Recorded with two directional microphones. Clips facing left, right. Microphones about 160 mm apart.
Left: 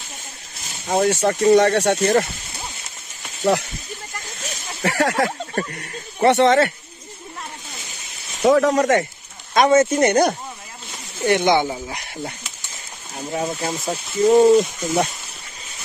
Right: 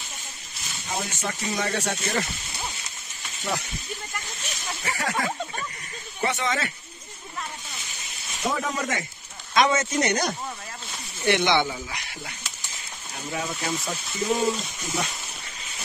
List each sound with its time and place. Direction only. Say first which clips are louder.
0.8 s speech: left 13 dB; 60° left (ahead or behind)
2.0 s speech: left 11 dB; 55° left (ahead or behind)
4.8 s speech: left 9 dB; 85° left; by 6.7 s 70° left (ahead or behind)
8.4 s speech: left 12 dB; 80° left
9.5 s speech: left 7 dB; 50° left (ahead or behind)
11.2 s speech: left 5 dB; 45° left (ahead or behind)
13.3 s speech: left 5 dB; 35° left (ahead or behind)
14.2 s speech: left 13 dB; 60° left (ahead or behind)